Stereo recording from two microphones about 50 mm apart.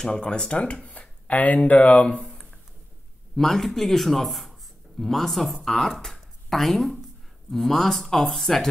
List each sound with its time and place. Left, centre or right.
0.0 s speech: centre
3.3 s speech: centre